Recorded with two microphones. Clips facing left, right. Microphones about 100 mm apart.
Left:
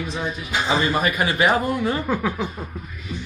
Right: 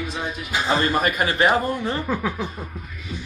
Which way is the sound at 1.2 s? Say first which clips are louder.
Even; 15° left (ahead or behind).